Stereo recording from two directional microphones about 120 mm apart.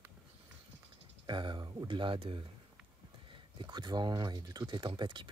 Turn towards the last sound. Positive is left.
turn(degrees=-40)  # may be behind; listen again after turning